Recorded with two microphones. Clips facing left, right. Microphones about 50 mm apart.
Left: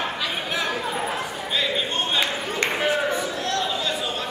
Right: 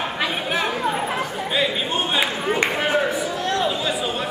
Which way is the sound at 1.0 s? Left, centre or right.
Centre.